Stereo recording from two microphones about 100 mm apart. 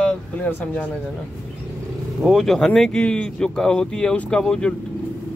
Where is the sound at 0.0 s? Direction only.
15° left (ahead or behind).